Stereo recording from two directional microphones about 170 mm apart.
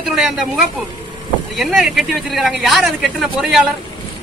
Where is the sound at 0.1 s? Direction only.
Centre (ahead or behind).